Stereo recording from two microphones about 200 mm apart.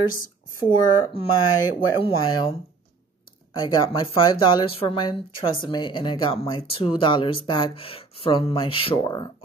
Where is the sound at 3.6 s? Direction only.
25° left (ahead or behind).